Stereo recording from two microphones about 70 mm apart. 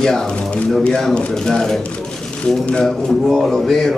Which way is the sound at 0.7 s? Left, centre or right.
Centre.